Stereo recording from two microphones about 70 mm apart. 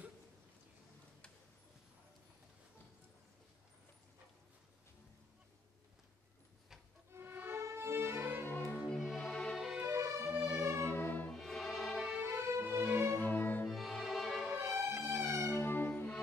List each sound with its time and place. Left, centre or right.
7.1 s music: right
8.5 s music: left
8.8 s music: centre
9.1 s music: centre
9.9 s music: right
10.8 s music: left
11.3 s music: centre
12.2 s music: right
13.2 s music: left
13.7 s music: centre
14.6 s music: right
15.5 s music: left